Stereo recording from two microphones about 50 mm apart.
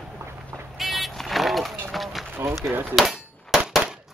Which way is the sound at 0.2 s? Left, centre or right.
Right.